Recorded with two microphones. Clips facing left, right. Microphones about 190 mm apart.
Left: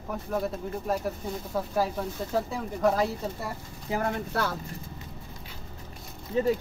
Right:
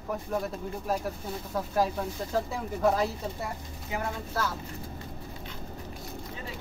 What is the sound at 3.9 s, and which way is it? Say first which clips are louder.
Speech: left 5 dB; 35° left (ahead or behind).